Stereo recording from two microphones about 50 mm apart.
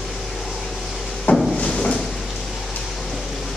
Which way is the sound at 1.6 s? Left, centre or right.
Left.